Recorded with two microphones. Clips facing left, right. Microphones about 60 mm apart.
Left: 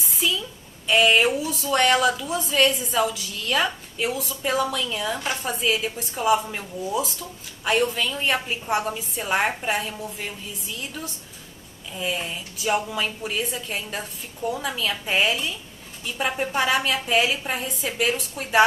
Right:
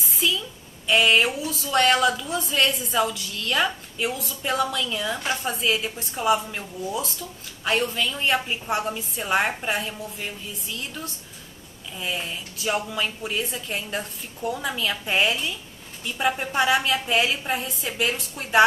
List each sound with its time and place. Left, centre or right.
0.8 s a woman's voice: centre
12.0 s a woman's voice: centre
13.8 s speech: centre
14.5 s a woman's voice: centre